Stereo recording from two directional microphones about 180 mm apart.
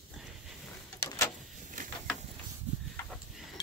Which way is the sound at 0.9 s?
15° left (ahead or behind).